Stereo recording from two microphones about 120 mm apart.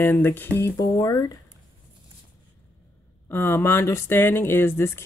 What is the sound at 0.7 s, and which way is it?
Speech, 30° left (ahead or behind).